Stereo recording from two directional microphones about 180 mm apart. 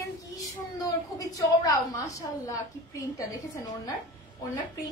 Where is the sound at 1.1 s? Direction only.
20° left (ahead or behind).